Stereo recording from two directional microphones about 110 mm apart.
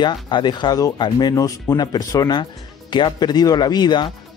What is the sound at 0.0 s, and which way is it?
Speech, 45° left (ahead or behind).